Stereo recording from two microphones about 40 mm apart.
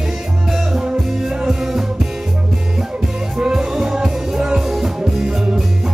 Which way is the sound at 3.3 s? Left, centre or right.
Centre.